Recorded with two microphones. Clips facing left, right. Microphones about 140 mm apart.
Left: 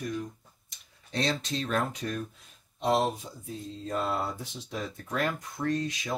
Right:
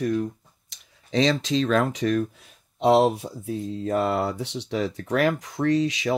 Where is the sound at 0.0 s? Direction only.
65° right (ahead or behind).